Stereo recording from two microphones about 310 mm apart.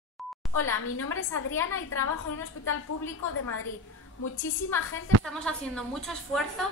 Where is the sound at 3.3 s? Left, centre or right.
Left.